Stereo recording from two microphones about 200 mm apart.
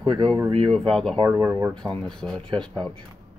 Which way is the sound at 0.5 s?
25° right (ahead or behind).